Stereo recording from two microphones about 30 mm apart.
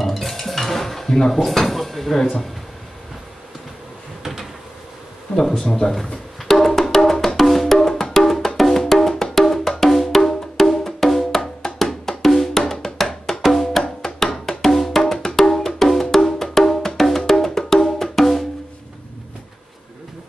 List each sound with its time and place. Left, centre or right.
0.0 s a sound: centre
1.1 s speech: centre
1.4 s speech: centre
5.3 s speech: centre
6.4 s music: centre
8.7 s wood block: centre
11.0 s music: centre
11.8 s wood block: centre
14.7 s wood block: centre
15.0 s wood block: centre